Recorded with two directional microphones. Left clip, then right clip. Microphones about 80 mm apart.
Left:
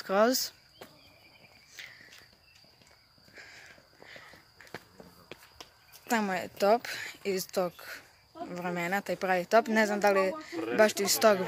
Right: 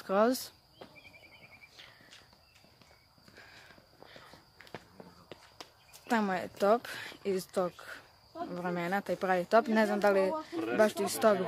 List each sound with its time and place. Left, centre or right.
0.0 s speech: centre
1.8 s walk: centre
3.3 s a sound: centre
6.0 s speech: centre
7.5 s speech: centre
10.8 s speech: centre